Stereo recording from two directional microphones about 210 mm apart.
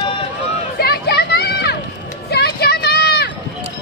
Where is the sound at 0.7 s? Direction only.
50° left (ahead or behind).